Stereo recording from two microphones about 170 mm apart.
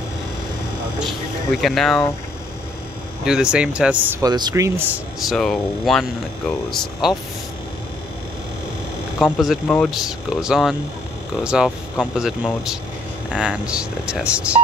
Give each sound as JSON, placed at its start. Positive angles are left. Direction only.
{"t": 1.6, "sound": "speech", "side_deg": 0}
{"t": 3.3, "sound": "speech", "side_deg": -5}
{"t": 4.2, "sound": "speech", "side_deg": -25}
{"t": 5.3, "sound": "speech", "side_deg": 0}
{"t": 9.2, "sound": "speech", "side_deg": 0}